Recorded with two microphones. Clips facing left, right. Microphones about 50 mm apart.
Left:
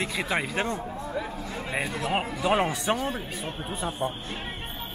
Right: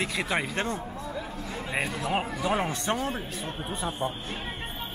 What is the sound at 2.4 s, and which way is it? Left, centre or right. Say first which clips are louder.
Speech: left 5 dB; left.